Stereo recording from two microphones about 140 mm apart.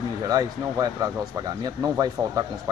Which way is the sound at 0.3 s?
25° right (ahead or behind).